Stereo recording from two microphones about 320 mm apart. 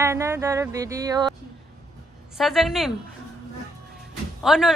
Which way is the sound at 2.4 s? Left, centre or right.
Centre.